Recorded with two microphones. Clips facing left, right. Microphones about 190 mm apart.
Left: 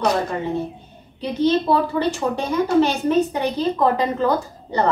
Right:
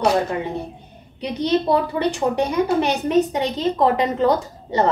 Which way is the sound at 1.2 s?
15° right (ahead or behind).